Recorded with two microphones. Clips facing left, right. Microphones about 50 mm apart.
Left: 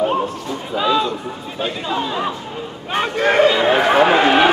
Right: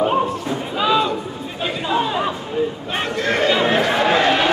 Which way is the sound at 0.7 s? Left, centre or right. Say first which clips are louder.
Even; centre.